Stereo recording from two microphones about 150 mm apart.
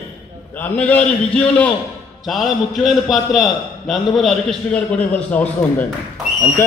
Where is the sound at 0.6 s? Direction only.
10° left (ahead or behind).